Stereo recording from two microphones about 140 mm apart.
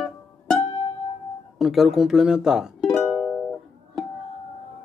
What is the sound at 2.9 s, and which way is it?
Music, 10° left (ahead or behind).